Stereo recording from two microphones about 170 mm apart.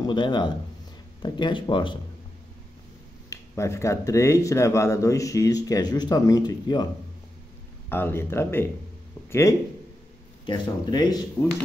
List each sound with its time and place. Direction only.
0.0 s speech: 25° left (ahead or behind)
3.3 s speech: 15° left (ahead or behind)
7.9 s speech: 15° left (ahead or behind)